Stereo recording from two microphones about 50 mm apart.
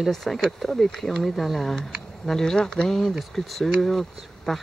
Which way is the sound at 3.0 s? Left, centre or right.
Centre.